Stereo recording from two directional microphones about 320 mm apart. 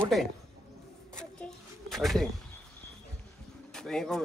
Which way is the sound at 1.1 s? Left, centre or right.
Centre.